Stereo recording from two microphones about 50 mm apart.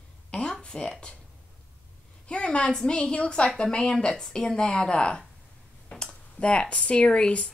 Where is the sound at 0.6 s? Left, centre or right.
Centre.